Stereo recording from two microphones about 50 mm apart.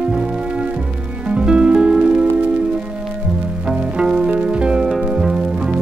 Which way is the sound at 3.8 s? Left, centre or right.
Centre.